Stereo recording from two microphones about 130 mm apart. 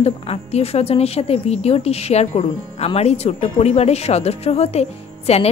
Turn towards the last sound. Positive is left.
turn(degrees=55)  # may be behind; listen again after turning